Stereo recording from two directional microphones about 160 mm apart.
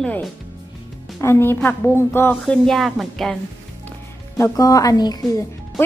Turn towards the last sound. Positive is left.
turn(degrees=25)  # may be behind; listen again after turning